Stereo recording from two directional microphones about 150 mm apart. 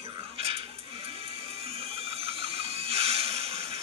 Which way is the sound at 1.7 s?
40° right (ahead or behind).